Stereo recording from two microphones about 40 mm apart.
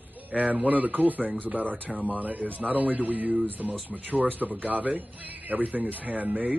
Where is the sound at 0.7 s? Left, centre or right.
Right.